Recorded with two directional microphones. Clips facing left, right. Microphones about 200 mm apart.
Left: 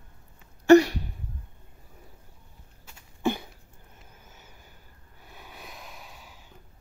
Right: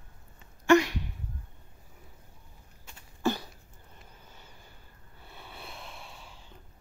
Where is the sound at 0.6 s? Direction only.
35° left (ahead or behind).